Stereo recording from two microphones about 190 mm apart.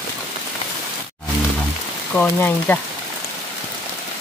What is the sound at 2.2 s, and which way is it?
Speech, 10° left (ahead or behind).